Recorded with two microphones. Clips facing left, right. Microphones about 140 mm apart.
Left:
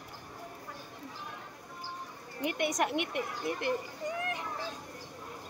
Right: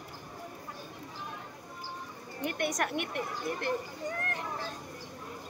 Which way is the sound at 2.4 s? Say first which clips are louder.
Left 1 dB; 15° left (ahead or behind).